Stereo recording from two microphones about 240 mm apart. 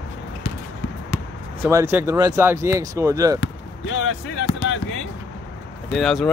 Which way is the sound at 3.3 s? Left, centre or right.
Left.